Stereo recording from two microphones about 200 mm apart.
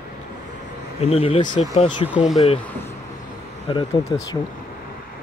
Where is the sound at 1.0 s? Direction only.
30° left (ahead or behind).